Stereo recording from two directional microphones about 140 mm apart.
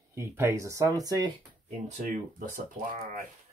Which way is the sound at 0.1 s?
15° right (ahead or behind).